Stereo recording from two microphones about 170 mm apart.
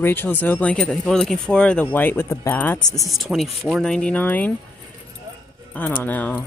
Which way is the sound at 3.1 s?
Centre (ahead or behind).